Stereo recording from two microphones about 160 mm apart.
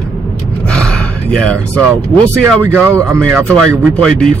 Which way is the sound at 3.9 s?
5° left (ahead or behind).